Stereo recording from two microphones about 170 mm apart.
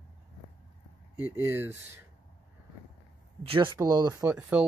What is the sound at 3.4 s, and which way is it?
Speech, 35° right (ahead or behind).